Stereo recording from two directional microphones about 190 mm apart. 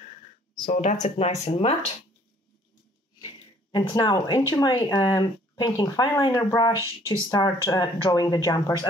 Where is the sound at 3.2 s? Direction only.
25° left (ahead or behind).